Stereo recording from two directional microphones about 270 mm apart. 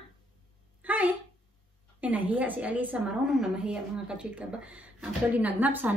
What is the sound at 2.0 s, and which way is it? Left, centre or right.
A woman's voice, centre.